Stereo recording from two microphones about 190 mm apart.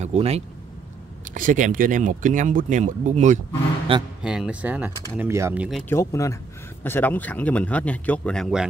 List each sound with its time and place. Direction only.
0.0 s speech: 35° right (ahead or behind)
4.2 s speech: 5° right (ahead or behind)
5.9 s speech: 15° left (ahead or behind); by 8.6 s centre (ahead or behind)